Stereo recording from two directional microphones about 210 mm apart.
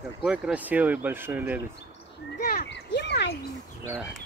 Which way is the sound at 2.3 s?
50° left (ahead or behind).